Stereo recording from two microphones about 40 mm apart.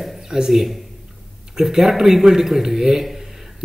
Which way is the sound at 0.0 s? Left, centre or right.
Centre.